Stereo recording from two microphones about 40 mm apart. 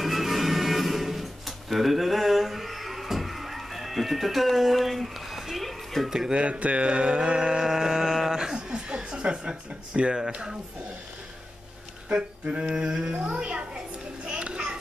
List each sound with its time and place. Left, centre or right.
0.0 s music: centre
6.0 s speech: centre
6.3 s mantra: right
10.3 s speech: right
12.1 s child singing: right